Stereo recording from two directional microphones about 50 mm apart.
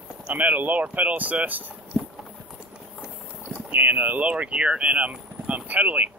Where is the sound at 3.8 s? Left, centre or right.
Right.